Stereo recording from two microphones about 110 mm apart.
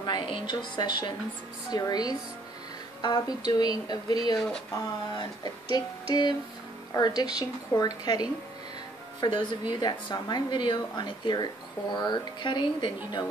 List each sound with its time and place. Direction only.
0.0 s a woman's voice: 45° left (ahead or behind)